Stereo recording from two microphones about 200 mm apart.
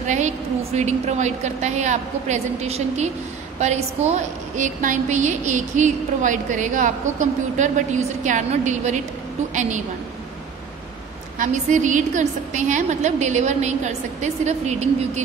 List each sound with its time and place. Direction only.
0.0 s a woman's voice: 35° right (ahead or behind)
11.3 s a woman's voice: 40° right (ahead or behind)